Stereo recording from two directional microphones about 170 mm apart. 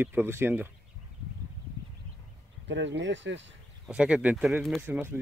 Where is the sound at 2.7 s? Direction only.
90° right.